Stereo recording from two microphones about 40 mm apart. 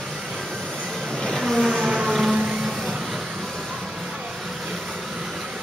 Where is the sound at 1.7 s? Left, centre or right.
Right.